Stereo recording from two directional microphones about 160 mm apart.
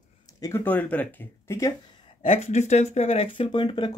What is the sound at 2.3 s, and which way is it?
Speech, 45° left (ahead or behind).